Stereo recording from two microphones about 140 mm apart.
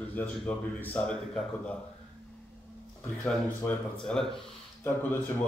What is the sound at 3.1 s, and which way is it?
A man's voice, 10° left (ahead or behind).